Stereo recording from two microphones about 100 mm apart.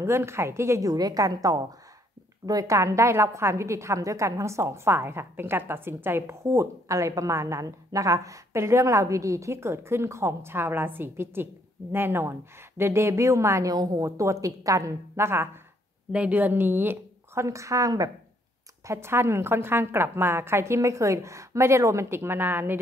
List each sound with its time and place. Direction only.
0.0 s a woman's voice: 25° right (ahead or behind)
16.1 s a woman's voice: 15° right (ahead or behind)